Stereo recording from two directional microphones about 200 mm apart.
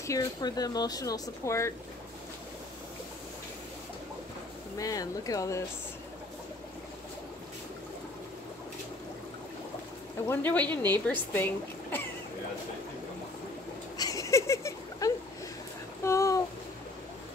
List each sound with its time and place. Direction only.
0.0 s speech: 15° left (ahead or behind)
4.7 s speech: 15° left (ahead or behind)
10.2 s a woman's voice: 10° left (ahead or behind)
13.9 s a sound: 15° left (ahead or behind)